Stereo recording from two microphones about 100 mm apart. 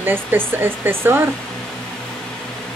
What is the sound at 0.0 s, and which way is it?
Speech, 20° right (ahead or behind).